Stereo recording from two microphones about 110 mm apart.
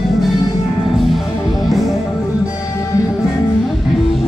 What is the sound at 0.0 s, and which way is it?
Music, centre (ahead or behind).